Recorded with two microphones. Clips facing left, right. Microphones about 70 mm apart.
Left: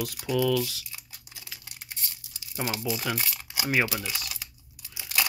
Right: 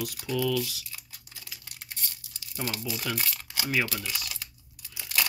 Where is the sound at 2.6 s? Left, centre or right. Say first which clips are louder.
Left 3 dB; left.